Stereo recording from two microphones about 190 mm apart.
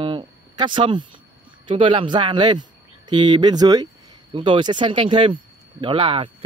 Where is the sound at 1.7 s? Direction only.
25° right (ahead or behind).